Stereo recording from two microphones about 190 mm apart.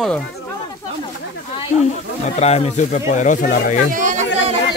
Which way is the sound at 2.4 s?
35° left (ahead or behind).